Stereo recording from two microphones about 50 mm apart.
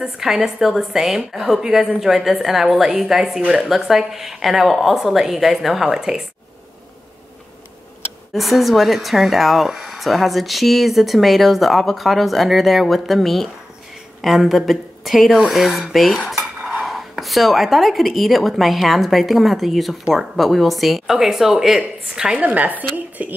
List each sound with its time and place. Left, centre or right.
0.0 s a woman's voice: centre
8.3 s speech: centre
16.3 s cutlery: centre
16.8 s speech: centre
22.4 s a woman's voice: right